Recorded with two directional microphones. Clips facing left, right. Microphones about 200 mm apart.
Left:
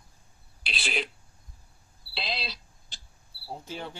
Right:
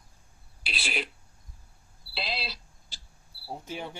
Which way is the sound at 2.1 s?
5° right (ahead or behind).